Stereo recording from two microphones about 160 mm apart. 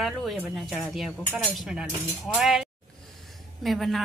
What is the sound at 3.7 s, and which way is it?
Speech, centre (ahead or behind).